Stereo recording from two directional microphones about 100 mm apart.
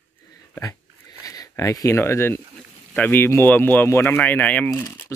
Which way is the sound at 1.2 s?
35° left (ahead or behind).